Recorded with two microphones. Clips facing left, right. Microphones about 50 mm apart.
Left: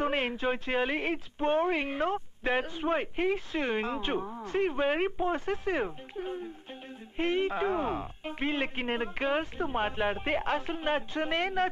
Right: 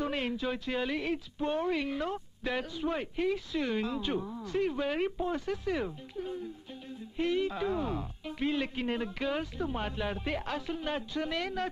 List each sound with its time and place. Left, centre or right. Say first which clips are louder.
0.0 s speech: left 3 dB; left